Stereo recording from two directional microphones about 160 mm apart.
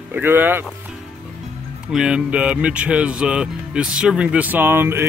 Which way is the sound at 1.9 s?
5° right (ahead or behind).